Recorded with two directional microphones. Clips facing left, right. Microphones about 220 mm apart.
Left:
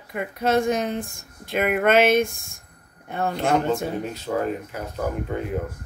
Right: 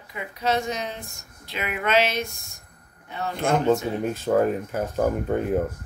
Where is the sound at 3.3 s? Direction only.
50° right (ahead or behind).